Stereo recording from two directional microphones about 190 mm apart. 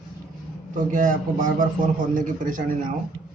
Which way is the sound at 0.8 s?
45° right (ahead or behind).